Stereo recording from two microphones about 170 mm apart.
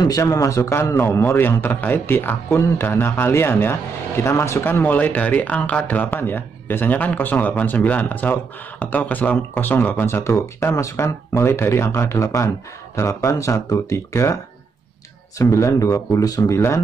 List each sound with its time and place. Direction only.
0.0 s speech: 20° left (ahead or behind)